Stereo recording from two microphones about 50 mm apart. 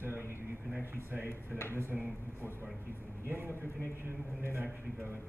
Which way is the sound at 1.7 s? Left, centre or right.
Right.